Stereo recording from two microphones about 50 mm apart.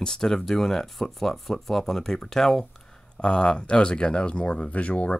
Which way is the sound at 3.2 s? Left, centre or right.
Centre.